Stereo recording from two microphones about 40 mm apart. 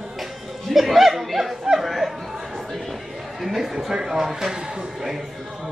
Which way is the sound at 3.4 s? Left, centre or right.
Centre.